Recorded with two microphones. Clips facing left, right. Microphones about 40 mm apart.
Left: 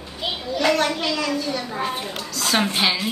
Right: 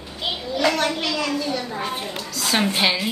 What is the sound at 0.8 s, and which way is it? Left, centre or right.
A woman's voice, centre.